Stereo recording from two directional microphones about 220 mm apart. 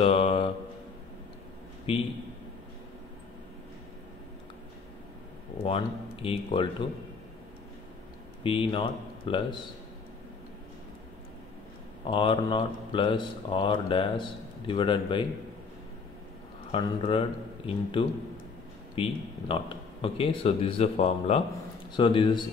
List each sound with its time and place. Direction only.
0.0 s a sound: 25° left (ahead or behind)
1.9 s speech: 25° left (ahead or behind)
5.6 s speech: 25° left (ahead or behind)
8.5 s speech: 25° left (ahead or behind)
12.1 s speech: 20° left (ahead or behind)
16.7 s speech: 25° left (ahead or behind)